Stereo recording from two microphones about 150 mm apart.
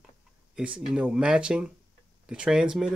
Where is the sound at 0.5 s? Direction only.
5° right (ahead or behind).